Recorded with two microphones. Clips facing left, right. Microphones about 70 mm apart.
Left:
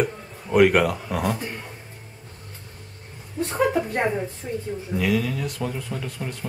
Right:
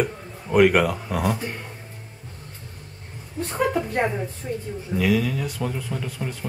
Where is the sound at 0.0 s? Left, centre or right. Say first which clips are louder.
Even; centre.